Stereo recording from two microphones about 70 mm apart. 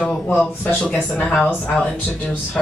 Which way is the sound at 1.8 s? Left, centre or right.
Left.